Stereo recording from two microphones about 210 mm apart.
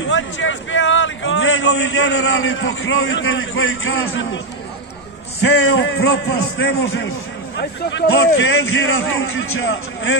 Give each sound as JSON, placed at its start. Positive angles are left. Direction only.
{"t": 0.0, "sound": "a sound", "side_deg": 65}
{"t": 2.4, "sound": "a man's voice", "side_deg": 65}
{"t": 5.4, "sound": "a man's voice", "side_deg": 55}